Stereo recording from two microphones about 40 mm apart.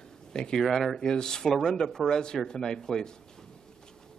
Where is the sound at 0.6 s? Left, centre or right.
Centre.